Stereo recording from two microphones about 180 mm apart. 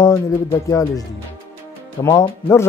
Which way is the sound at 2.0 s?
15° left (ahead or behind).